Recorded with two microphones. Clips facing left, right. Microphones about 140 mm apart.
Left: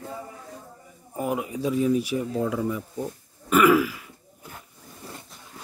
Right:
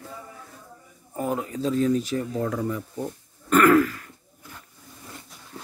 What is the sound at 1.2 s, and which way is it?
Speech, 10° left (ahead or behind).